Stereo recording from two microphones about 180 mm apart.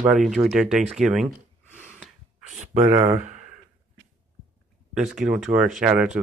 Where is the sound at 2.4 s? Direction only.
45° right (ahead or behind).